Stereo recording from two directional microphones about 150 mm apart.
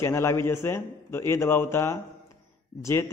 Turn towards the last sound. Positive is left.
turn(degrees=15)  # may be behind; listen again after turning